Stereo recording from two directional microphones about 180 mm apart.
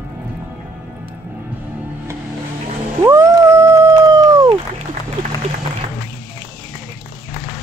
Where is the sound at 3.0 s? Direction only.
15° right (ahead or behind).